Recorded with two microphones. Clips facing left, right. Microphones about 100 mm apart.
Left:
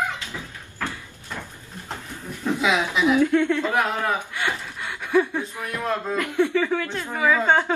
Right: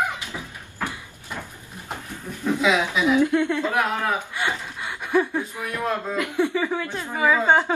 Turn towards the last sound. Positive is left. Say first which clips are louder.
# right 1 dB
turn(degrees=-15)  # may be behind; listen again after turning